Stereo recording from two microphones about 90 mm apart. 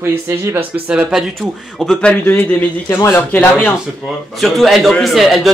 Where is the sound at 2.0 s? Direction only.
15° left (ahead or behind).